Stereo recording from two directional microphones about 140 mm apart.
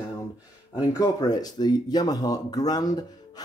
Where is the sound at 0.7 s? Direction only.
25° left (ahead or behind).